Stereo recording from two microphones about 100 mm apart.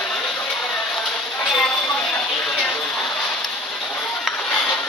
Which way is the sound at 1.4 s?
10° left (ahead or behind).